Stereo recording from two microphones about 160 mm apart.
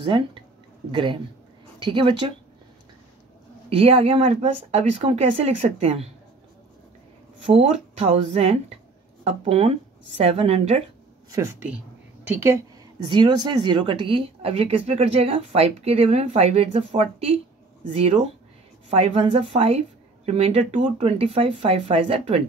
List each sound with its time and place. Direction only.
0.0 s speech: 30° right (ahead or behind)
1.8 s speech: 30° right (ahead or behind)
3.7 s speech: 35° right (ahead or behind)
7.4 s speech: 40° right (ahead or behind)
12.3 s a woman's voice: 15° right (ahead or behind)
13.0 s speech: 25° right (ahead or behind)